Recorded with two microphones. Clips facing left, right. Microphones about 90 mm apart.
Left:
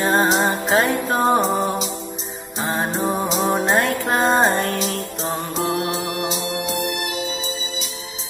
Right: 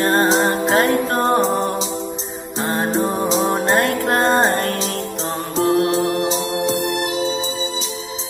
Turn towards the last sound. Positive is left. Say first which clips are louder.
# right 4 dB
turn(degrees=-35)  # may be behind; listen again after turning